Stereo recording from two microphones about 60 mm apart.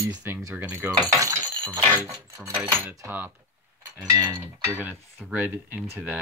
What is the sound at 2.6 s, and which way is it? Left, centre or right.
Speech, right.